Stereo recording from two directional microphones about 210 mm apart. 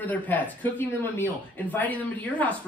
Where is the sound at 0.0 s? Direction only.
10° left (ahead or behind).